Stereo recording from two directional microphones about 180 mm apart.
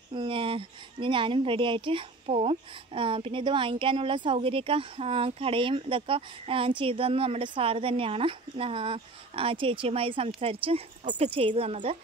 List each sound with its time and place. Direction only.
0.1 s speech: 30° right (ahead or behind)